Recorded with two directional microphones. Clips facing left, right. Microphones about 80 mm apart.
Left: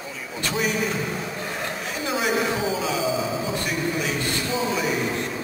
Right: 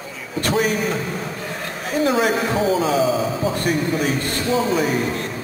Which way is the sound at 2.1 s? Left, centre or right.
Right.